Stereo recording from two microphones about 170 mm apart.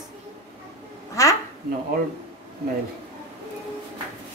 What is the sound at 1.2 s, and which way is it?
Speech, 20° left (ahead or behind).